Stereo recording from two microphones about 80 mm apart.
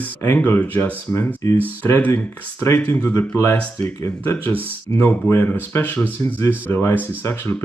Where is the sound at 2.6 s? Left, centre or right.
Left.